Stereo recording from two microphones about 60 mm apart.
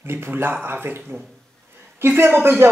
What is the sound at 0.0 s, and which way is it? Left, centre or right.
Speech, right.